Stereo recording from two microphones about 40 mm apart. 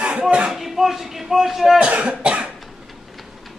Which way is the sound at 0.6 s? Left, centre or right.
Centre.